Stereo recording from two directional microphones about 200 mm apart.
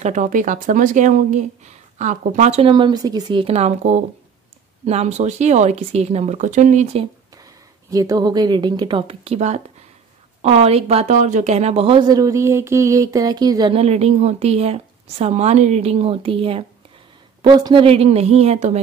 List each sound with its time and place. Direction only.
0.0 s a woman's voice: 40° right (ahead or behind)
7.9 s a woman's voice: 15° right (ahead or behind); by 18.8 s 35° right (ahead or behind)